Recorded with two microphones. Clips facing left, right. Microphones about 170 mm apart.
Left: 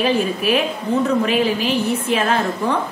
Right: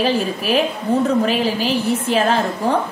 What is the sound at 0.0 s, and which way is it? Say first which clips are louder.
A woman's voice: left 1 dB; 35° right (ahead or behind).